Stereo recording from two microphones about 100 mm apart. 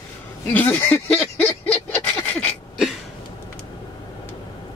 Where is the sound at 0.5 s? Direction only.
15° left (ahead or behind).